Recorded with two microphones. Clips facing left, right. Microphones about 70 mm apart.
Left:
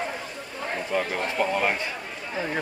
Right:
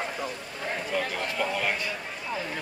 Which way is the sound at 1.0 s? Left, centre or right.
Left.